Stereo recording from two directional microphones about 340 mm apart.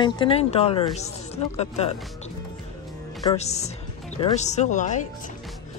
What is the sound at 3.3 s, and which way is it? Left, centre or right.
Speech, centre.